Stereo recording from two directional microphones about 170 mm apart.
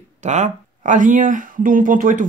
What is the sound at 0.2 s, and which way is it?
Speech, 45° right (ahead or behind).